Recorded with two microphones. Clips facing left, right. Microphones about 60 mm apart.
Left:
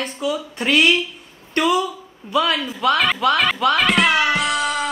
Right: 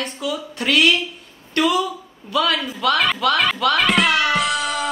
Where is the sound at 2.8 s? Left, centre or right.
Centre.